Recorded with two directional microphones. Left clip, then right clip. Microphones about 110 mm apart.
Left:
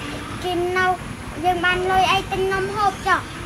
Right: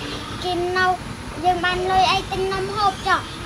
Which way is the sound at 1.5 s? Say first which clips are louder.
Left 1 dB; centre (ahead or behind).